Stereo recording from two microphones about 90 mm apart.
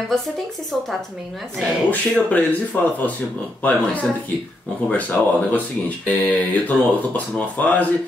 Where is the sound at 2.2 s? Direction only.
15° left (ahead or behind).